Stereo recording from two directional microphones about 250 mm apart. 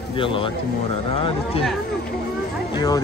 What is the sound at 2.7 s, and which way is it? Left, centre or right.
Speech, centre.